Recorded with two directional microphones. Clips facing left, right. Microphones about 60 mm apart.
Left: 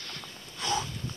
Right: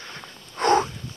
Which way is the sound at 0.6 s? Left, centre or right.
Right.